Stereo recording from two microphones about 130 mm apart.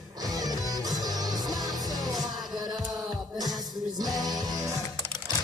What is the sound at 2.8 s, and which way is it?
Music, centre (ahead or behind).